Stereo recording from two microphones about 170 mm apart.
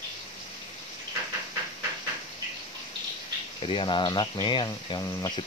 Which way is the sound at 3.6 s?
30° left (ahead or behind).